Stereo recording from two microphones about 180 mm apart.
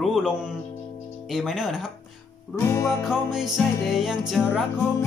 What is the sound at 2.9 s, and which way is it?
Music, centre (ahead or behind).